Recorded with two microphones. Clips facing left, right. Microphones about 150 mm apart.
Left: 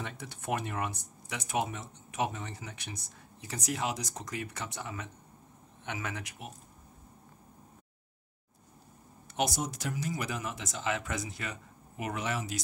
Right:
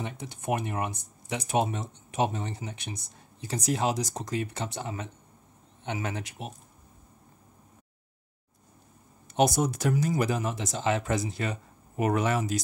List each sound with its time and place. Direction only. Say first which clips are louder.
0.0 s speech: right 5 dB; 20° right (ahead or behind)
9.5 s speech: right 9 dB; 55° right (ahead or behind); by 11.6 s 30° right (ahead or behind)
12.0 s speech: right 9 dB; 45° right (ahead or behind)